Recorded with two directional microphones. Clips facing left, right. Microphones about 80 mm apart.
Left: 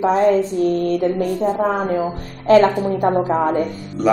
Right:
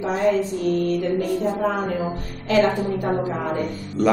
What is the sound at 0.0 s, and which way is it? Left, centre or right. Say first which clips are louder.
Mantra: left 5 dB; left.